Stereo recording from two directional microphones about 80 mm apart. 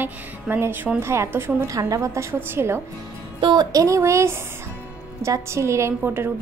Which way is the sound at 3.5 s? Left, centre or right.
Right.